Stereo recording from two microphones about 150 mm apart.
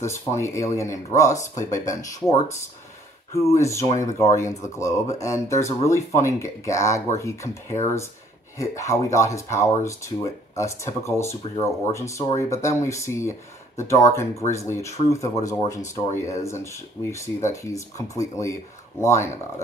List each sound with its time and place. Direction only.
0.0 s speech: 20° left (ahead or behind)
3.3 s speech: 20° left (ahead or behind)
7.4 s speech: 55° left (ahead or behind)
8.5 s speech: 20° left (ahead or behind)